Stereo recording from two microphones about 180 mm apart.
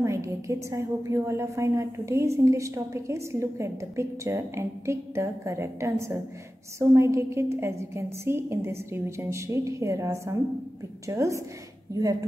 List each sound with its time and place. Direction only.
0.0 s a woman's voice: 15° right (ahead or behind)